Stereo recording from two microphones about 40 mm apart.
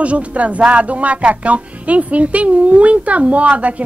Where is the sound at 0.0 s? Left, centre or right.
Right.